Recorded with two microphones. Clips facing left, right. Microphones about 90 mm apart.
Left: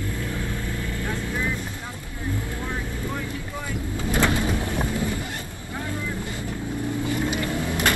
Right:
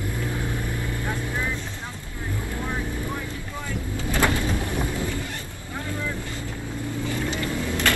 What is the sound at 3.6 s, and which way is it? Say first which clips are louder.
Vehicle: even; 20° left (ahead or behind).